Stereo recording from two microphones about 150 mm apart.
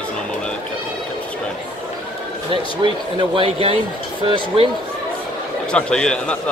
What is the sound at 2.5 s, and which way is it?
Speech, 35° right (ahead or behind).